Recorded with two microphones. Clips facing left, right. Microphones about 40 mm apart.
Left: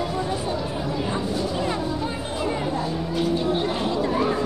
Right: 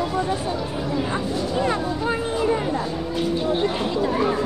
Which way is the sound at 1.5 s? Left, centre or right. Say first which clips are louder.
Right 3 dB; centre.